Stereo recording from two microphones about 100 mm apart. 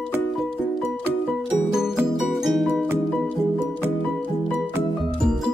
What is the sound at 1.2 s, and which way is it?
Music, centre (ahead or behind).